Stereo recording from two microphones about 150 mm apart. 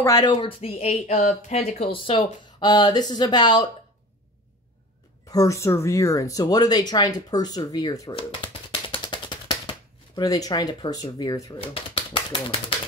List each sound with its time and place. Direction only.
0.0 s speech: 25° left (ahead or behind)
5.3 s speech: 20° left (ahead or behind)
8.1 s typewriter: 35° left (ahead or behind)
11.5 s speech: 40° left (ahead or behind)